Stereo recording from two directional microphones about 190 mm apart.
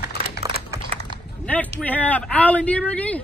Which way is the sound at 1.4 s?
10° left (ahead or behind).